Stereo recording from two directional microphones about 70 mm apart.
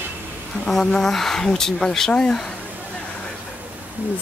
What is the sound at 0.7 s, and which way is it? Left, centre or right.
Speech, centre.